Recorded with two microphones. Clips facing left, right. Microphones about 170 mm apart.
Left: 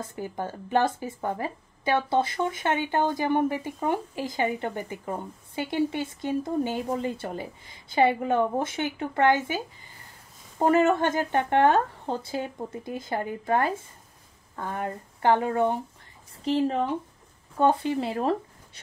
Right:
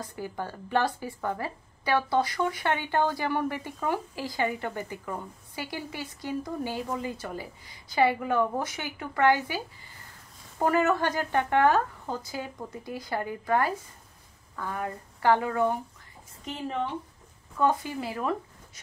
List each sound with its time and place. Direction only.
0.0 s a woman's voice: 20° left (ahead or behind)
10.6 s a woman's voice: 25° left (ahead or behind)